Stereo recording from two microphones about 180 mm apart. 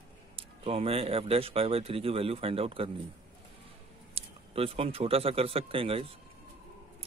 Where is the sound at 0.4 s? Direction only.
35° right (ahead or behind).